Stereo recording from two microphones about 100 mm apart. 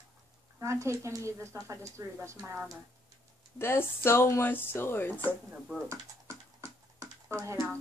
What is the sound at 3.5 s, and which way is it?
Speech, 25° left (ahead or behind).